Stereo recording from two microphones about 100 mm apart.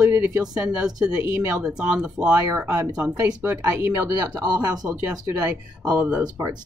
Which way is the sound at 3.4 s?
25° right (ahead or behind).